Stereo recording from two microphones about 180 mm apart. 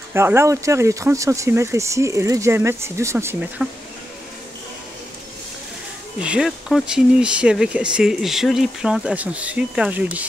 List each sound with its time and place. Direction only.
0.1 s speech: 15° right (ahead or behind)
6.1 s speech: 5° right (ahead or behind)